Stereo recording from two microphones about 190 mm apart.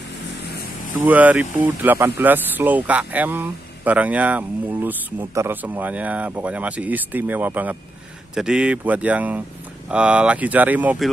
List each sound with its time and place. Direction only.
1.0 s speech: 10° right (ahead or behind)